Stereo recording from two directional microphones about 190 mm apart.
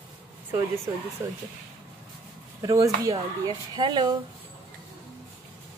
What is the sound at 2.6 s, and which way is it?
Speech, 15° right (ahead or behind).